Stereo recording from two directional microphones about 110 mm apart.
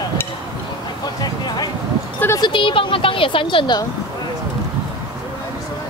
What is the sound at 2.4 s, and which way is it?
A woman's voice, 50° left (ahead or behind).